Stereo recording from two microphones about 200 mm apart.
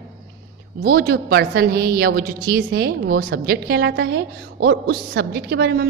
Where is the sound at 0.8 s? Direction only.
50° right (ahead or behind).